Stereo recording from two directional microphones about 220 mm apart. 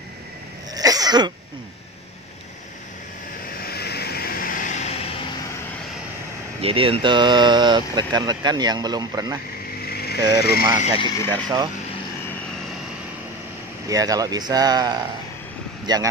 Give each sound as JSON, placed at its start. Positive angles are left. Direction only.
{"t": 0.7, "sound": "sneeze", "side_deg": -15}
{"t": 3.6, "sound": "vehicle", "side_deg": 45}
{"t": 6.6, "sound": "speech", "side_deg": -25}
{"t": 9.8, "sound": "vehicle", "side_deg": 45}
{"t": 10.3, "sound": "speech", "side_deg": 45}
{"t": 11.2, "sound": "speech", "side_deg": -20}
{"t": 13.8, "sound": "speech", "side_deg": -15}